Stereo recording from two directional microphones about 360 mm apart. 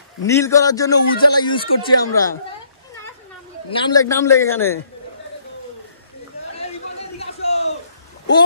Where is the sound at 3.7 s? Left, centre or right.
Centre.